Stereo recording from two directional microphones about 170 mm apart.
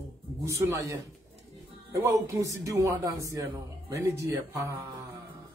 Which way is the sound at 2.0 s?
20° right (ahead or behind).